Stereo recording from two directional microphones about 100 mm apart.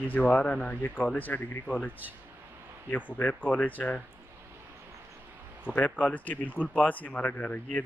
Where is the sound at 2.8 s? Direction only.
20° left (ahead or behind).